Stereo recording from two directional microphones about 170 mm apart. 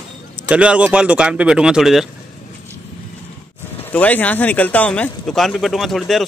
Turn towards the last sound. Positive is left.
turn(degrees=0)  # may be behind; listen again after turning